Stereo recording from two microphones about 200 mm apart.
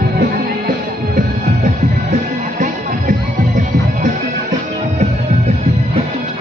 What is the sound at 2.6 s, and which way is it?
Music, 35° right (ahead or behind).